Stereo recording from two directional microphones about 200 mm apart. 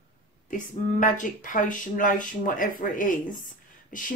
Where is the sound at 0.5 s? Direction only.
40° left (ahead or behind).